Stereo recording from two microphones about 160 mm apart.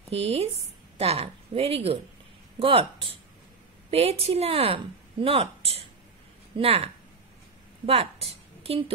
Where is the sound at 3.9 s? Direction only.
40° right (ahead or behind).